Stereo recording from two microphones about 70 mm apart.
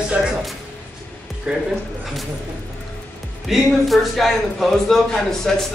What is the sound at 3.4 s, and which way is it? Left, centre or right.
A man's voice, centre.